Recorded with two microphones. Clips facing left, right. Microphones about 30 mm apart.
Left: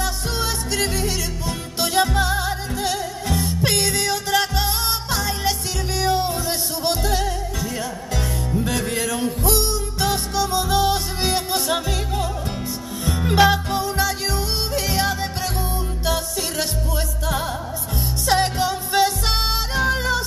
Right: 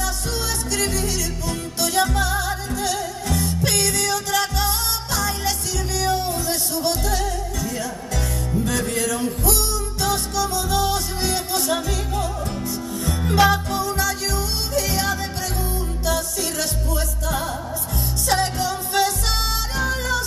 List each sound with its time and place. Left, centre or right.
0.0 s music: centre
13.3 s music: centre